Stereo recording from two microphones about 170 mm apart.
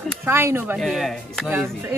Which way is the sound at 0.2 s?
15° right (ahead or behind).